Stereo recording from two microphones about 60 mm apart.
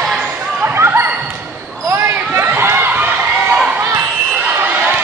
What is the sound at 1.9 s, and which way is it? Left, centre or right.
Basketball bounce, right.